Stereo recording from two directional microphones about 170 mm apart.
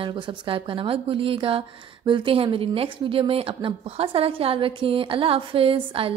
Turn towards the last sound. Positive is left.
turn(degrees=-35)  # may be behind; listen again after turning